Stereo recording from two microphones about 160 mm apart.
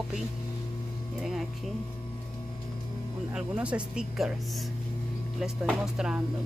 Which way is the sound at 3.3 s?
5° right (ahead or behind).